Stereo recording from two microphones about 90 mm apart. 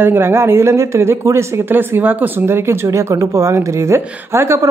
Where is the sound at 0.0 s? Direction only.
25° right (ahead or behind).